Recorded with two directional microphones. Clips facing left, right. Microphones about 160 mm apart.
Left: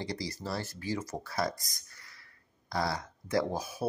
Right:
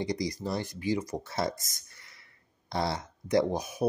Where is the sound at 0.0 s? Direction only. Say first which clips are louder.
Right 5 dB; 15° right (ahead or behind).